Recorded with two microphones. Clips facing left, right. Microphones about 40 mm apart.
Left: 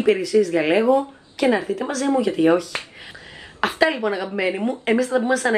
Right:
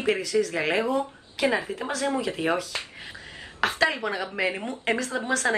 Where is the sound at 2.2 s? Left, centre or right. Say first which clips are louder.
Left 9 dB; centre.